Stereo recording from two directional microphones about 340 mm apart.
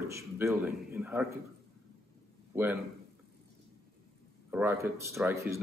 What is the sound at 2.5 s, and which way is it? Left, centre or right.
Speech, centre.